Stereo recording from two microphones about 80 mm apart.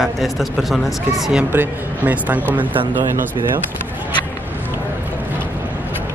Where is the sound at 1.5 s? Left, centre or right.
Right.